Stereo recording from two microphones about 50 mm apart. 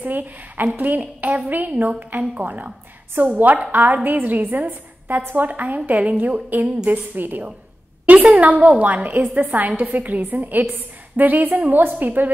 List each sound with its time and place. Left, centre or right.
0.0 s a woman's voice: right